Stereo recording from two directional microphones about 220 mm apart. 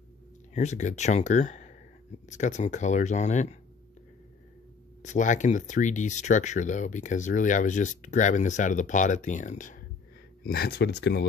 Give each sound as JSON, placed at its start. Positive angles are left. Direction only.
{"t": 0.6, "sound": "speech", "side_deg": 30}
{"t": 5.0, "sound": "speech", "side_deg": 35}
{"t": 10.4, "sound": "speech", "side_deg": 45}